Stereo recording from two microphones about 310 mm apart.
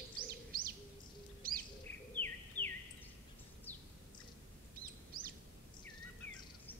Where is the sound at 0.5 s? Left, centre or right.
Right.